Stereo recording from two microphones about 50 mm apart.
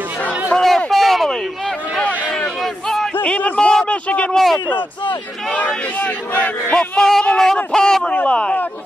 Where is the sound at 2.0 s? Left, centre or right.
Left.